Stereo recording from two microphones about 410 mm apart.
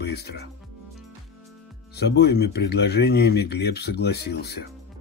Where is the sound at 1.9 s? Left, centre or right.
Left.